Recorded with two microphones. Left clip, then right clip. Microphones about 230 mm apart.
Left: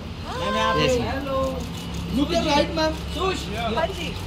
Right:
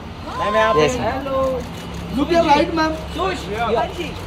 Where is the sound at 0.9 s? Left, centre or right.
Centre.